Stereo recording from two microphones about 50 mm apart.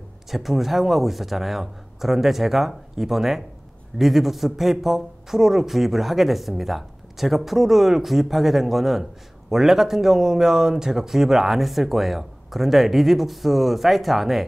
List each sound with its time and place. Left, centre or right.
0.3 s a man's voice: centre